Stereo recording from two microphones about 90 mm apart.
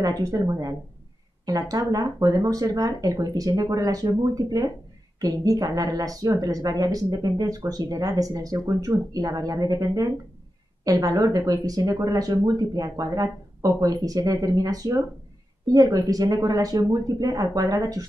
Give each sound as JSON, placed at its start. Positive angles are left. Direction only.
{"t": 0.0, "sound": "a woman's voice", "side_deg": -40}